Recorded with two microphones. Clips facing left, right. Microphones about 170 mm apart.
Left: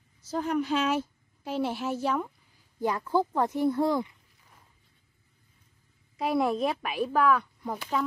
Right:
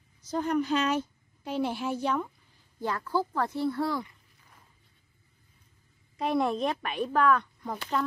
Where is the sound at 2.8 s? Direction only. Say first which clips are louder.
Left 3 dB; 15° left (ahead or behind).